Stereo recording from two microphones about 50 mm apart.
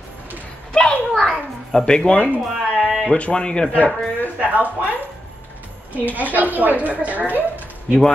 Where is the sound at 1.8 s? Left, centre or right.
Centre.